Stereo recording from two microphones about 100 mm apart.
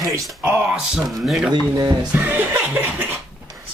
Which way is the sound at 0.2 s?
10° right (ahead or behind).